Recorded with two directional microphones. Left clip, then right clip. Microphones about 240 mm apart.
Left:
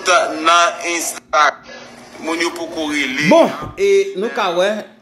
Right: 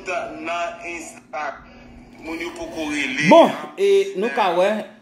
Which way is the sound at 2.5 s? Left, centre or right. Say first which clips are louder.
Left 5 dB; left.